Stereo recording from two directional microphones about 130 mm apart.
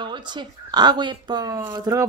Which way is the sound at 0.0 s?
35° right (ahead or behind).